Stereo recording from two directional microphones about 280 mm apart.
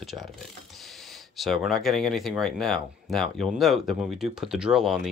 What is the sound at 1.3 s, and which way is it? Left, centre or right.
Speech, centre.